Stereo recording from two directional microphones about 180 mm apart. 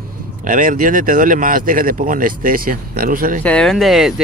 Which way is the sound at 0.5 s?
45° right (ahead or behind).